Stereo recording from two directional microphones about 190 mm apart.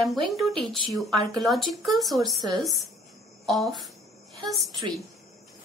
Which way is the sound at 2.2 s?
20° right (ahead or behind).